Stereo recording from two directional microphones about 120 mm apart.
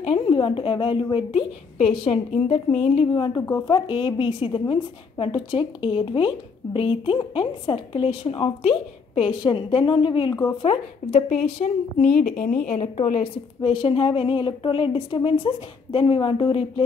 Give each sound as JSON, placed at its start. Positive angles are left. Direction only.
{"t": 0.0, "sound": "a woman's voice", "side_deg": 50}
{"t": 3.6, "sound": "a woman's voice", "side_deg": 45}
{"t": 10.6, "sound": "a woman's voice", "side_deg": 55}
{"t": 12.2, "sound": "a woman's voice", "side_deg": 85}
{"t": 13.6, "sound": "a woman's voice", "side_deg": 45}